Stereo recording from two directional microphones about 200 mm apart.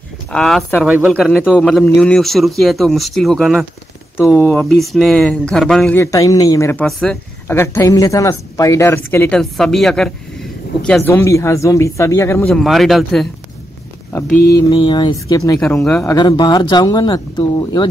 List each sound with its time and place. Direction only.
0.3 s a man's voice: centre (ahead or behind)
4.7 s a man's voice: centre (ahead or behind)
5.9 s speech: 15° left (ahead or behind)
12.5 s a man's voice: centre (ahead or behind)
14.7 s speech: 25° left (ahead or behind)
15.6 s a man's voice: 5° left (ahead or behind)
16.1 s speech: 20° left (ahead or behind)